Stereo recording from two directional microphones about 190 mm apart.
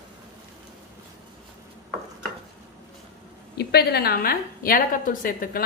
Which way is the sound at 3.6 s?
60° left (ahead or behind).